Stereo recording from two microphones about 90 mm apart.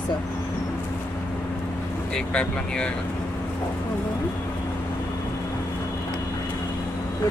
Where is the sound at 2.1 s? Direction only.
10° left (ahead or behind).